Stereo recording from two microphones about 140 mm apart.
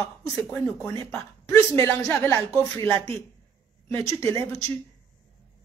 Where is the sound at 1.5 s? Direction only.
20° left (ahead or behind).